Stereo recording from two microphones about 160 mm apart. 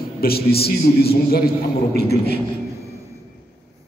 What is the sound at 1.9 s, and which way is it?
Speech, 90° left.